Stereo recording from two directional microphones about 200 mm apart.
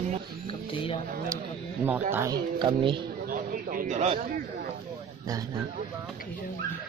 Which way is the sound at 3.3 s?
40° right (ahead or behind).